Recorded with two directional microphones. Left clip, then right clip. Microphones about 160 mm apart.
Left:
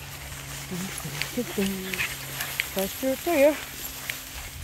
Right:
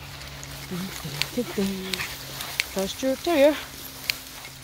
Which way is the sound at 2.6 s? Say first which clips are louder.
Right 2 dB; 20° right (ahead or behind).